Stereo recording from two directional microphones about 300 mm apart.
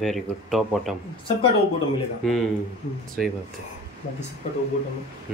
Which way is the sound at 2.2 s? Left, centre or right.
Centre.